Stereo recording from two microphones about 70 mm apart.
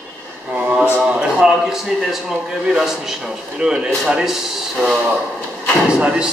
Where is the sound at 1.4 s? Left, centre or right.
Centre.